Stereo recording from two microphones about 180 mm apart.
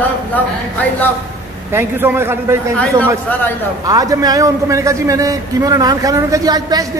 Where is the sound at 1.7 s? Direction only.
15° right (ahead or behind).